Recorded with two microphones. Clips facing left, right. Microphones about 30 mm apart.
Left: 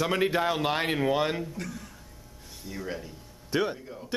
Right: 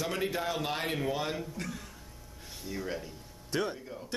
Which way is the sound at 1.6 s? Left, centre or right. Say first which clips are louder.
Left 2 dB; centre.